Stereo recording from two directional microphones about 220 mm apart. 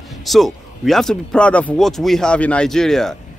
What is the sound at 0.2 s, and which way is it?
Speech, centre (ahead or behind).